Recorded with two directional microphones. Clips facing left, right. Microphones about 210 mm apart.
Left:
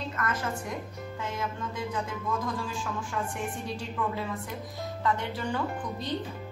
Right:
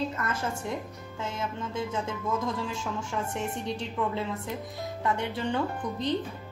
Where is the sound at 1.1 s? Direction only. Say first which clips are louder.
Right 1 dB; 25° right (ahead or behind).